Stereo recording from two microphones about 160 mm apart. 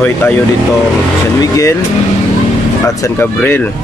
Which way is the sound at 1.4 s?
20° left (ahead or behind).